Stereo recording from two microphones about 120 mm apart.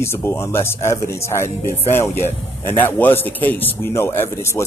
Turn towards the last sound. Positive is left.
turn(degrees=20)  # may be behind; listen again after turning